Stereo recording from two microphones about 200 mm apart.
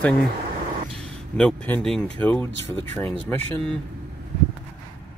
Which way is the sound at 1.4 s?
5° left (ahead or behind).